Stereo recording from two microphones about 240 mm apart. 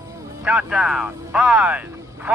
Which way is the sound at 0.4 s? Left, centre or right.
Centre.